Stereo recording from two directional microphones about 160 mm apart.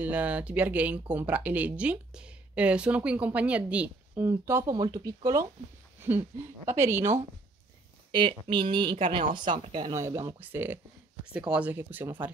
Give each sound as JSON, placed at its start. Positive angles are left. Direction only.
{"t": 0.0, "sound": "speech", "side_deg": -10}
{"t": 8.1, "sound": "speech", "side_deg": -30}